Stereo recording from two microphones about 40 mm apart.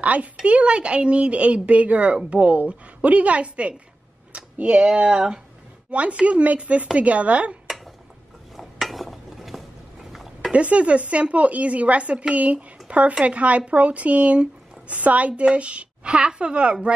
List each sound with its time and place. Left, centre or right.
0.0 s speech: right
8.5 s a sound: centre
10.5 s speech: right